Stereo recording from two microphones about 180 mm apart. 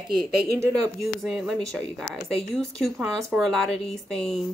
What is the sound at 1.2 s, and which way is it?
A woman's voice, centre (ahead or behind).